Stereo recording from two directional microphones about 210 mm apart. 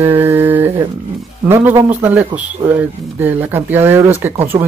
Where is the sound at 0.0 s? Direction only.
10° right (ahead or behind).